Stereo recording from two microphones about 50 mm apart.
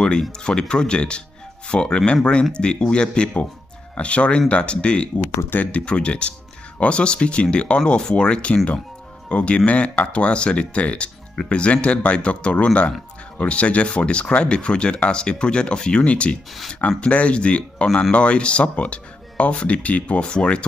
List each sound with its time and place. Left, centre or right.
0.2 s speech: centre
20.2 s speech: centre